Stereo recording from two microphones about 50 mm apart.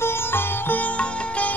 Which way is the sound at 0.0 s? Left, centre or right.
Left.